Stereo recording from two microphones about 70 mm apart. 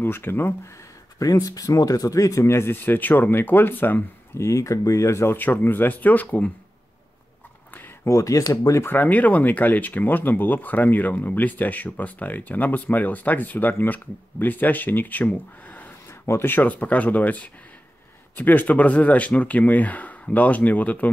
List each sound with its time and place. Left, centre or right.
0.0 s speech: left
1.2 s speech: left
2.5 s speech: left
4.4 s speech: left
5.3 s speech: left
8.1 s speech: left
8.8 s speech: left